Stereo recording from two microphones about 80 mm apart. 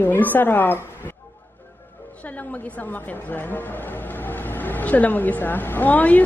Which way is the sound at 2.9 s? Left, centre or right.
Left.